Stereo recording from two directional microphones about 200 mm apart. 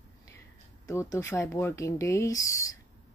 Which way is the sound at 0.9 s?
15° left (ahead or behind).